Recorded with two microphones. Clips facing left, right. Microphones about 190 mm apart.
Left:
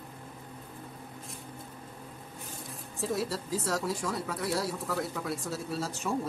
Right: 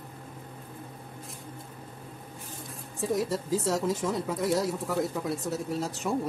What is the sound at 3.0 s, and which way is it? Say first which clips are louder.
Speech: right 4 dB; 15° right (ahead or behind).